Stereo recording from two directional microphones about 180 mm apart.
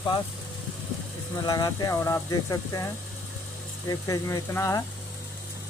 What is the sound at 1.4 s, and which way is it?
Speech, 20° left (ahead or behind).